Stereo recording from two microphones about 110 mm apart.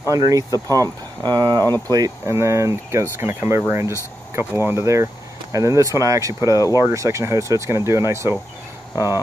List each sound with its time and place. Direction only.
0.1 s speech: 30° right (ahead or behind)